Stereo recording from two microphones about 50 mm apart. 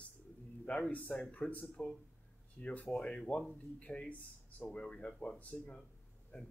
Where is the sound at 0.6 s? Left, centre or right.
Left.